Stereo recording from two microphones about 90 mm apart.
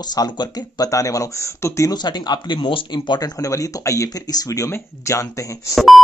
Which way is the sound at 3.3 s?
35° left (ahead or behind).